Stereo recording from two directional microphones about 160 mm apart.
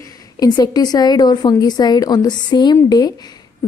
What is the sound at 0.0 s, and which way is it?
A woman's voice, 20° left (ahead or behind).